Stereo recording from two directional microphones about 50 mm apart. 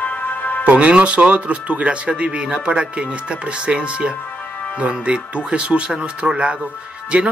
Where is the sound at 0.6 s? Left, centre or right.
Right.